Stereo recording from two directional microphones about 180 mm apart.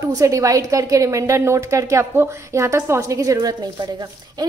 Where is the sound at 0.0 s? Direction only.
20° right (ahead or behind).